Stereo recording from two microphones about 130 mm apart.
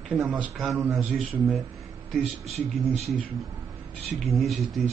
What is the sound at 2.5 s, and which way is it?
Speech, 55° right (ahead or behind).